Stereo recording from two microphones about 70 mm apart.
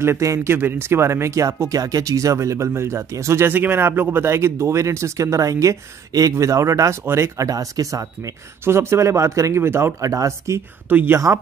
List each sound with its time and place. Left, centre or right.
0.0 s speech: right
3.4 s speech: right
7.4 s speech: right
8.6 s speech: right
10.0 s speech: right
10.9 s speech: right